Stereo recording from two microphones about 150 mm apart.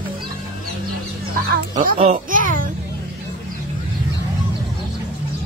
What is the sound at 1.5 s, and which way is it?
Music, 75° right (ahead or behind).